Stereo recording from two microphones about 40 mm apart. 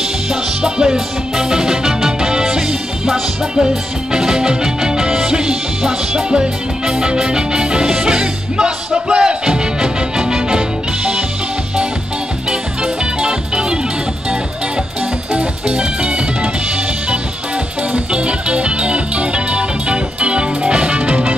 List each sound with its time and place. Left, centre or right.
0.3 s music: centre
12.4 s music: right
15.3 s music: right
17.9 s music: right